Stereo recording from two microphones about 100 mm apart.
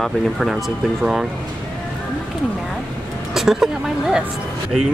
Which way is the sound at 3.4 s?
5° right (ahead or behind).